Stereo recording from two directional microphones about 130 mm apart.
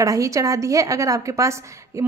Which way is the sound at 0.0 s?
25° right (ahead or behind).